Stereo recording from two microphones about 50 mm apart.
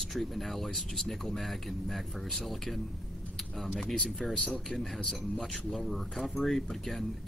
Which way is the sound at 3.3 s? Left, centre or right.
Centre.